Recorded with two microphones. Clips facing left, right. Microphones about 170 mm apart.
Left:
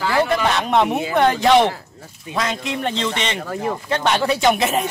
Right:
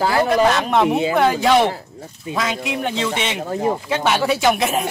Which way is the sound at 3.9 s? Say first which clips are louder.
Left 3 dB; 5° right (ahead or behind).